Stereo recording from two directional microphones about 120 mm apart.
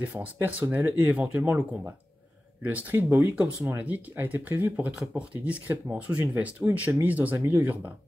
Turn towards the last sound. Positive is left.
turn(degrees=-15)  # may be behind; listen again after turning